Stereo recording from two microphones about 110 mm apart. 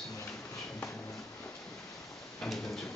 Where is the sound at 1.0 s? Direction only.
30° left (ahead or behind).